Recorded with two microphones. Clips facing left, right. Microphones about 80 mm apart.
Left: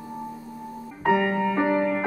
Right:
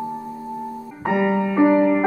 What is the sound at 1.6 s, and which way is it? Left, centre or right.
Music, right.